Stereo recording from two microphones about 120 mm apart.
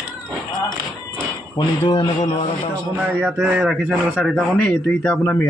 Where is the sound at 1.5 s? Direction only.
40° left (ahead or behind).